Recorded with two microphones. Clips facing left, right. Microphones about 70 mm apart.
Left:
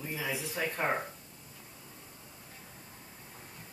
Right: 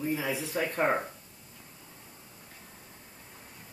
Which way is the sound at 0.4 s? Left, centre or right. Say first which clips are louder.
Right 5 dB; right.